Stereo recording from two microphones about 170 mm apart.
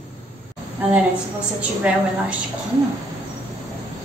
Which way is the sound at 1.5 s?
10° right (ahead or behind).